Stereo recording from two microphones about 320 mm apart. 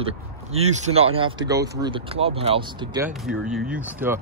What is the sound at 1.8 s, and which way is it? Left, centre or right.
A man's voice, centre.